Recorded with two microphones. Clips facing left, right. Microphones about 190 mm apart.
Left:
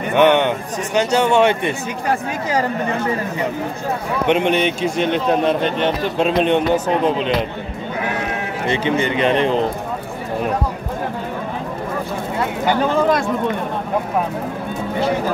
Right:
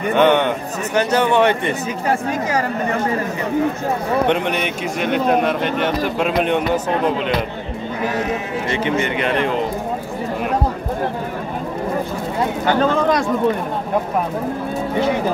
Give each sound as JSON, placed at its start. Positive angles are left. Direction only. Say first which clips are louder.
{"t": 0.1, "sound": "speech", "louder": "left 1 dB", "side_deg": 15}
{"t": 4.3, "sound": "a man's voice", "louder": "left 3 dB", "side_deg": 25}
{"t": 8.6, "sound": "a man's voice", "louder": "left 2 dB", "side_deg": 30}
{"t": 12.6, "sound": "speech", "louder": "even", "side_deg": 10}